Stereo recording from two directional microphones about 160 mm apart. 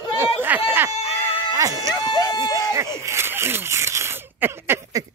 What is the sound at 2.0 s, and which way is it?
Speech, 25° left (ahead or behind).